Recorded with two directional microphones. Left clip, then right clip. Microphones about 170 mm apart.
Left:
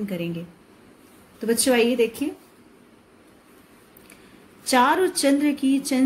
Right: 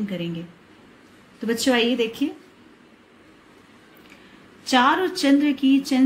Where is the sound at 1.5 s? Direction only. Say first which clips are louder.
Left 1 dB; 45° left (ahead or behind).